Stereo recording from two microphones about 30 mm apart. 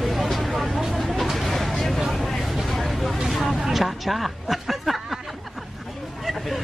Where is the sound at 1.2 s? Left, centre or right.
Centre.